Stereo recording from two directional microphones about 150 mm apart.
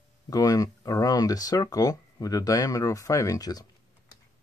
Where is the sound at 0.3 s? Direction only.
25° left (ahead or behind).